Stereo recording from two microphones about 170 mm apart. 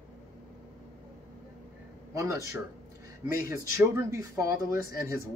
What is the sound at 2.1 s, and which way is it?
Speech, 15° right (ahead or behind).